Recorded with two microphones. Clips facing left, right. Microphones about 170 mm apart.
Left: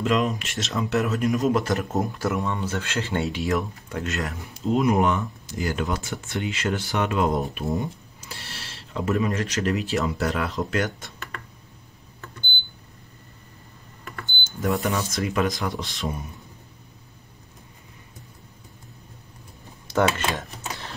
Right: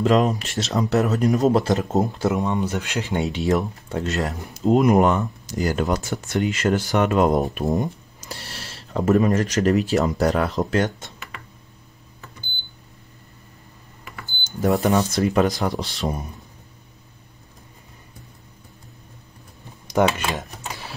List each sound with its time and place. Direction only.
0.0 s speech: 40° right (ahead or behind)
10.8 s speech: 20° right (ahead or behind)
14.6 s speech: 35° right (ahead or behind)
19.9 s speech: 15° right (ahead or behind)